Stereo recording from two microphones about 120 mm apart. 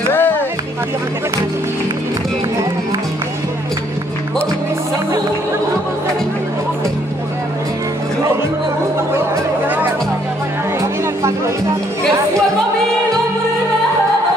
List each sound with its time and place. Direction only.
0.1 s music: 15° left (ahead or behind)